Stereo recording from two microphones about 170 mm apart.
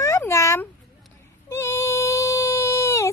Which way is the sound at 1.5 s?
15° left (ahead or behind).